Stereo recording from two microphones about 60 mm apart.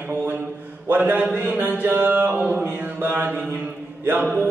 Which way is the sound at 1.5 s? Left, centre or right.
Right.